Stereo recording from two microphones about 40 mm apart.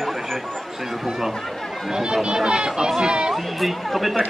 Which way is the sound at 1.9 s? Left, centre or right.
Centre.